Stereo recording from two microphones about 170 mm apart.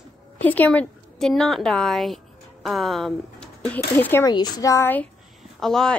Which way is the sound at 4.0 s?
15° left (ahead or behind).